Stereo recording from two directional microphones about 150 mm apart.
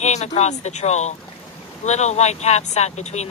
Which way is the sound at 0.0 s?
50° left (ahead or behind).